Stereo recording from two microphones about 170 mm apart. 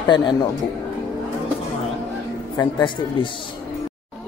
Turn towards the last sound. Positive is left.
turn(degrees=25)  # may be behind; listen again after turning